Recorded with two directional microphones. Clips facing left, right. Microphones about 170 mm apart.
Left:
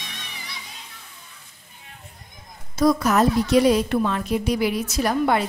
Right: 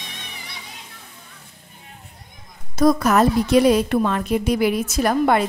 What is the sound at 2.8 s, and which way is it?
A woman's voice, 55° right (ahead or behind).